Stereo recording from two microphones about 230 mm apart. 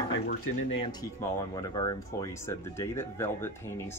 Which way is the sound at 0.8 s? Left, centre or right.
Centre.